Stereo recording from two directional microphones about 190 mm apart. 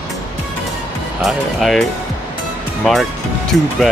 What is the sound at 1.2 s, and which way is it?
Speech, centre (ahead or behind).